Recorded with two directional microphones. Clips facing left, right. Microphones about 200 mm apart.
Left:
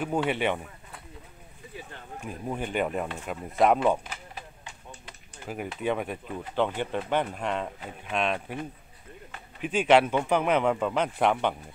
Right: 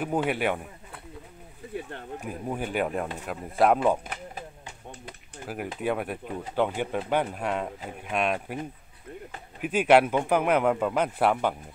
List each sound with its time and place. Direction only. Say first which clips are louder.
0.0 s speech: even; 5° right (ahead or behind)
1.8 s a sound: right 6 dB; 60° right (ahead or behind)
2.2 s speech: even; 5° right (ahead or behind)
4.0 s a sound: right 4 dB; 50° right (ahead or behind)
5.5 s speech: even; 5° right (ahead or behind)
9.6 s speech: right 1 dB; 5° right (ahead or behind)